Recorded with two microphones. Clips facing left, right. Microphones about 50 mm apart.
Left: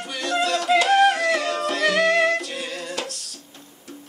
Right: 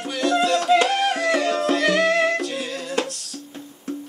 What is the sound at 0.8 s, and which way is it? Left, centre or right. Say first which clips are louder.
Music: left 4 dB; centre.